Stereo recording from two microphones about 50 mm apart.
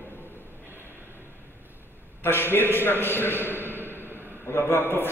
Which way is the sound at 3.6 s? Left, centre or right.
Right.